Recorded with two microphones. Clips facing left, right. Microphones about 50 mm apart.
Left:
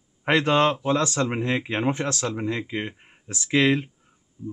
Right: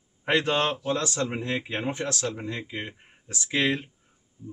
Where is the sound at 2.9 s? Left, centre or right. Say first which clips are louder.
Left 3 dB; left.